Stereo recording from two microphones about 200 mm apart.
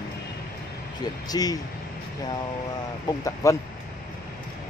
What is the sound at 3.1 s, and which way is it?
Speech, 15° left (ahead or behind).